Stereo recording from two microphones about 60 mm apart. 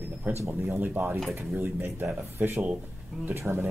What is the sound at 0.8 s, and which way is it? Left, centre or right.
Speech, right.